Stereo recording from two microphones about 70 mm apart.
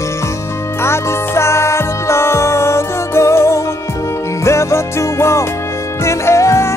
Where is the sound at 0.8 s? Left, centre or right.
Left.